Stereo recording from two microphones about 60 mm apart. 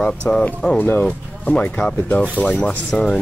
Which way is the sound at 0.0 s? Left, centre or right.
Centre.